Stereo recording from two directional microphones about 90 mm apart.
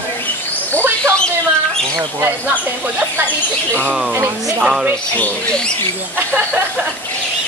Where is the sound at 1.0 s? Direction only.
10° left (ahead or behind).